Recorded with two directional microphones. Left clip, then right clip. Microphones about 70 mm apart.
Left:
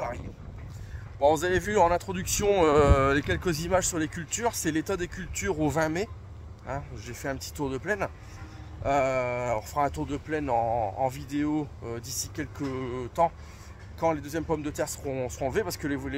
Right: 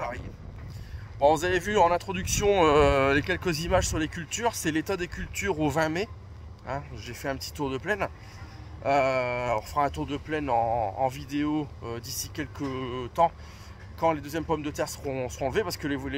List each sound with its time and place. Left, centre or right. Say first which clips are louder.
1.2 s speech: right 1 dB; left